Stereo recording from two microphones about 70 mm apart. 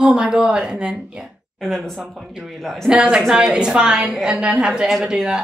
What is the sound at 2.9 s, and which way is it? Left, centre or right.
A woman's voice, centre.